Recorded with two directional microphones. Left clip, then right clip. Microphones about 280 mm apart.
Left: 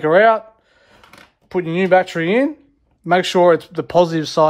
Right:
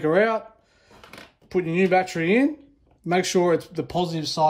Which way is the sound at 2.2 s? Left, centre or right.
Centre.